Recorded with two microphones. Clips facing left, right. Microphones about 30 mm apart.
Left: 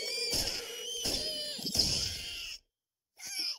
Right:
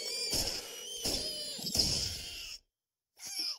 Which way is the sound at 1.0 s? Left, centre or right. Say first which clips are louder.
Even; centre.